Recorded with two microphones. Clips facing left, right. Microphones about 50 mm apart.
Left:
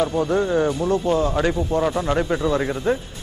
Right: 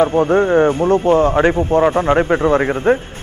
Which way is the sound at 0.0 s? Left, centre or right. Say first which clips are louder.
Right 7 dB; right.